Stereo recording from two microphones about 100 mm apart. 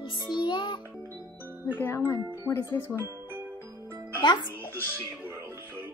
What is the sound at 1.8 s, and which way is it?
Speech, 20° left (ahead or behind).